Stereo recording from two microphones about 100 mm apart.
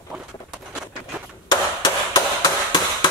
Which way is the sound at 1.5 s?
45° left (ahead or behind).